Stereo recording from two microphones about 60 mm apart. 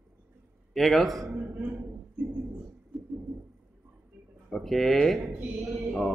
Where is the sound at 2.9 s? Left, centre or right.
Centre.